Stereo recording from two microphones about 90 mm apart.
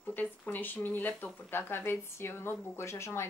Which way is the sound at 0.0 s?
20° left (ahead or behind).